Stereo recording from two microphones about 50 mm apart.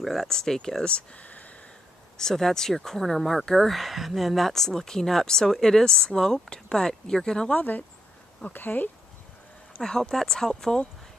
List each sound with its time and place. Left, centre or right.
0.0 s speech: centre
0.9 s speech: left
2.1 s speech: centre
7.5 s speech: left
9.8 s speech: centre